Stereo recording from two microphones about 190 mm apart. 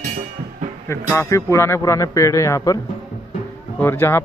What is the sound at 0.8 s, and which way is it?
A man's voice, 15° left (ahead or behind).